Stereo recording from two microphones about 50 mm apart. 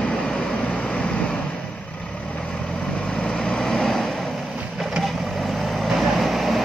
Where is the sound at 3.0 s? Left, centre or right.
Centre.